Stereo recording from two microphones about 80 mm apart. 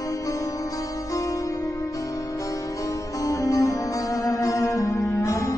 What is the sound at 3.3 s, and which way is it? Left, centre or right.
Music, left.